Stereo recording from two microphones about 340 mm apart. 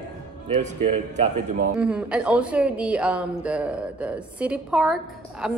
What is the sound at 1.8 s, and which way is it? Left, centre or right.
A woman's voice, centre.